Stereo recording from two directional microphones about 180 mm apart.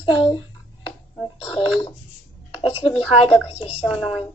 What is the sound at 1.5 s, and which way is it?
A woman's voice, 25° left (ahead or behind).